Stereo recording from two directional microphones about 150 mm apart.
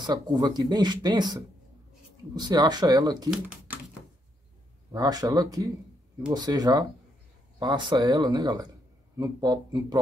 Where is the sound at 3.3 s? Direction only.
10° right (ahead or behind).